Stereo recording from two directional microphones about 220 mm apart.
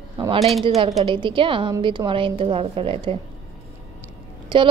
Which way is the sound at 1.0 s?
20° right (ahead or behind).